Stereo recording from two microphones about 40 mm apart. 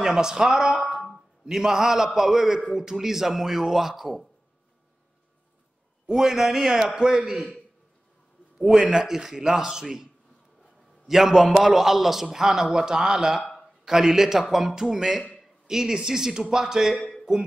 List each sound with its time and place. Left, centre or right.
0.0 s speech: centre
1.1 s a sound: centre
2.1 s a man's voice: centre
6.0 s a man's voice: centre
8.5 s a man's voice: centre
11.1 s a man's voice: centre